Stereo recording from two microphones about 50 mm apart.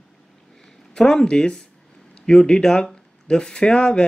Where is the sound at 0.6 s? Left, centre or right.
Centre.